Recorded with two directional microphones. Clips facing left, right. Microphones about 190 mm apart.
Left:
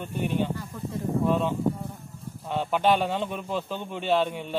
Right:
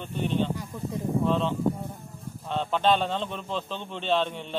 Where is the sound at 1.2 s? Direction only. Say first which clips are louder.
Left 1 dB; 10° left (ahead or behind).